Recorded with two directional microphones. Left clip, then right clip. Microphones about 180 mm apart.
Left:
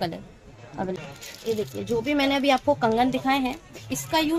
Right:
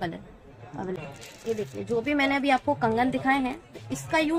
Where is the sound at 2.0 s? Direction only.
45° left (ahead or behind).